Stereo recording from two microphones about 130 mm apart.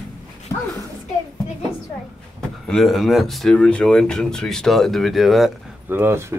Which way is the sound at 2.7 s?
Centre (ahead or behind).